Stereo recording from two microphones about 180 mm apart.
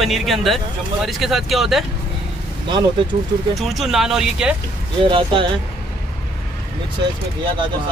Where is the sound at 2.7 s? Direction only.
25° right (ahead or behind).